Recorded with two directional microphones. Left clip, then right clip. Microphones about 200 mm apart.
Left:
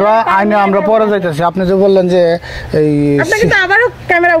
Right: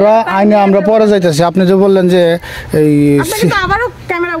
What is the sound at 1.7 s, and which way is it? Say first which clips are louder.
A man's voice: left 1 dB; 30° right (ahead or behind).